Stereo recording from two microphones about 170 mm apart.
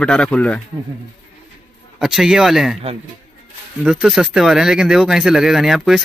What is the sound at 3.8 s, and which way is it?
Speech, 5° right (ahead or behind).